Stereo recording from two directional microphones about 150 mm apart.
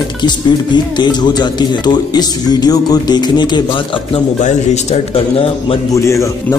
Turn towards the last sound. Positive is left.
turn(degrees=20)  # may be behind; listen again after turning